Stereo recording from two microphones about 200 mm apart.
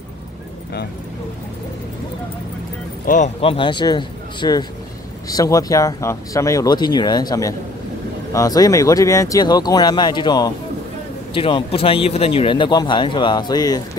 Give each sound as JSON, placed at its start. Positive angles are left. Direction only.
{"t": 3.1, "sound": "speech", "side_deg": 35}